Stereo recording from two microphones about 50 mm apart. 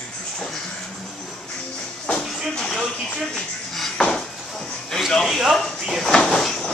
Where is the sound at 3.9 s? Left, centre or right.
Centre.